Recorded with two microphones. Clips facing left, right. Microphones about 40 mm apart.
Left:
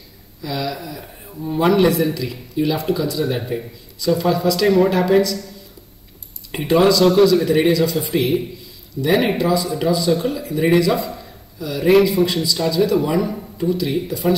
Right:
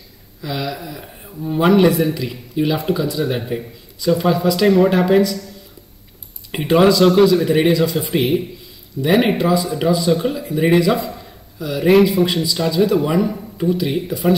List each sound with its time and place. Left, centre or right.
0.4 s speech: centre
6.5 s speech: centre